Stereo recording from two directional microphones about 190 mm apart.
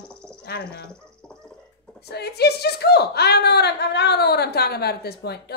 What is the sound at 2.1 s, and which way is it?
Speech, 60° left (ahead or behind).